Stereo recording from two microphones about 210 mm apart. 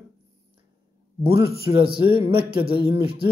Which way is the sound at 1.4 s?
50° left (ahead or behind).